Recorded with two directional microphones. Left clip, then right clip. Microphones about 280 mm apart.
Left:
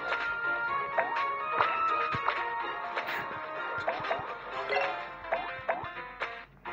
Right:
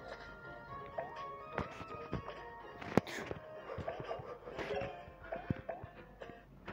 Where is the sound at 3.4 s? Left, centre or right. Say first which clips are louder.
Left 12 dB; centre.